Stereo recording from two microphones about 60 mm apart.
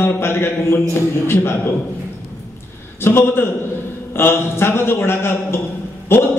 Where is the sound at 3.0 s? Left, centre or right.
Left.